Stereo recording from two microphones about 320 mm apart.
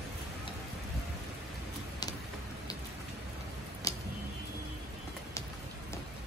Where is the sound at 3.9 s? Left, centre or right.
Centre.